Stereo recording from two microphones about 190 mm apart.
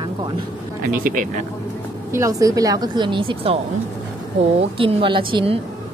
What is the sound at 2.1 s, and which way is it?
A woman's voice, 15° right (ahead or behind).